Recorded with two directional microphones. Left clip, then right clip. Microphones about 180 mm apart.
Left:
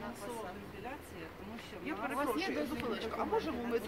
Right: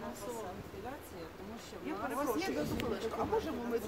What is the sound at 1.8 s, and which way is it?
Speech, 10° right (ahead or behind).